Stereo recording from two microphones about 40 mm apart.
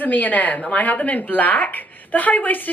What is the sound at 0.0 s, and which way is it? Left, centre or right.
A woman's voice, left.